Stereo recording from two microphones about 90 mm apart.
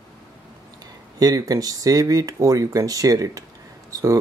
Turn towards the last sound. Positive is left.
turn(degrees=-35)  # may be behind; listen again after turning